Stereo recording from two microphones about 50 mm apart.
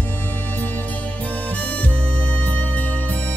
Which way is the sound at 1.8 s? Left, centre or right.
Left.